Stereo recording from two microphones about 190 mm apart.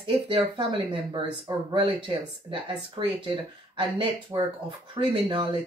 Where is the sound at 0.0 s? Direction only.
25° right (ahead or behind).